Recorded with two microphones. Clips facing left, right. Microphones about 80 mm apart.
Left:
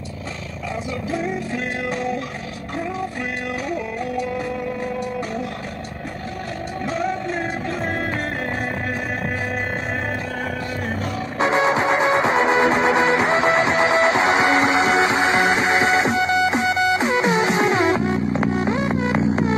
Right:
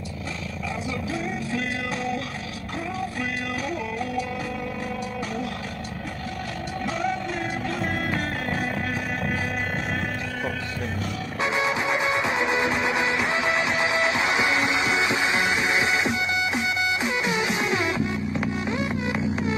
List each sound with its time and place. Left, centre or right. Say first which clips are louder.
6.9 s music: left 4 dB; left
11.3 s music: left 7 dB; left